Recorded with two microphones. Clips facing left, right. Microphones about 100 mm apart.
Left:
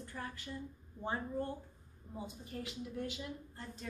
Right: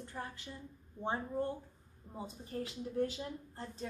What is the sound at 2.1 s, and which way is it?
Speech, 35° right (ahead or behind).